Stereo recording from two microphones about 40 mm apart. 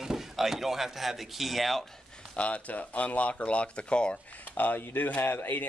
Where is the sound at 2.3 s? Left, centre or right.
Left.